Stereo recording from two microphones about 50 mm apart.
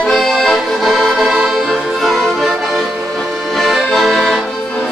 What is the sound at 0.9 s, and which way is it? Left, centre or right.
Music, centre.